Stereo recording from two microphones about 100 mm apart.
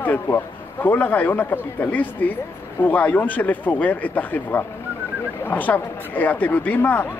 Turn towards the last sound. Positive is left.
turn(degrees=20)  # may be behind; listen again after turning